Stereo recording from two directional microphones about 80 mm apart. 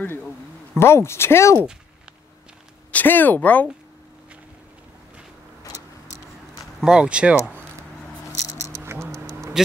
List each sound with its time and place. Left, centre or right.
0.7 s speech: left
2.9 s speech: left
6.8 s speech: centre
8.8 s a sound: right